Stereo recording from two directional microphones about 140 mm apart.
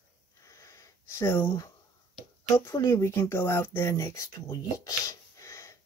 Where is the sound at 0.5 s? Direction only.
25° left (ahead or behind).